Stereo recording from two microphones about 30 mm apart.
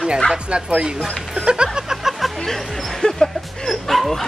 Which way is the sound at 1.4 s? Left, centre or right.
Right.